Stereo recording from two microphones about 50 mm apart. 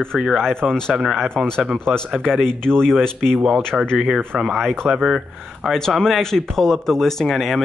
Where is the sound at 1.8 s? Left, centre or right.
Centre.